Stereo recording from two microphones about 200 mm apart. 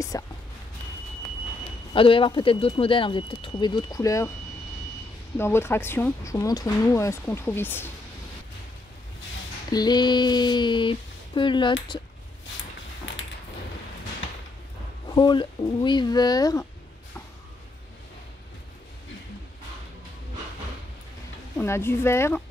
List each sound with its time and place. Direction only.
0.1 s whispering: 15° left (ahead or behind)
2.0 s speech: 25° left (ahead or behind)
5.4 s speech: 10° left (ahead or behind)
9.7 s speech: 20° left (ahead or behind)
15.0 s speech: 25° left (ahead or behind)
21.5 s speech: 10° left (ahead or behind)